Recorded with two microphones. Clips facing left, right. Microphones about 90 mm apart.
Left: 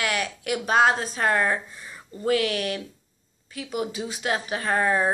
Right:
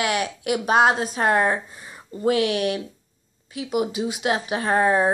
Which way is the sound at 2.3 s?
50° left (ahead or behind).